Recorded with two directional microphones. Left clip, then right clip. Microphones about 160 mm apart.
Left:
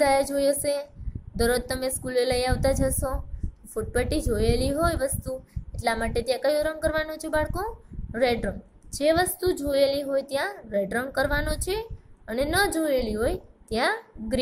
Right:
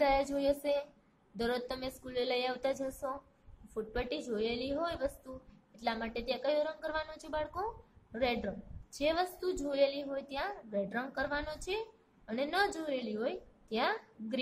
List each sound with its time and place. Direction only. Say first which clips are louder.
0.0 s a woman's voice: left 9 dB; 20° left (ahead or behind)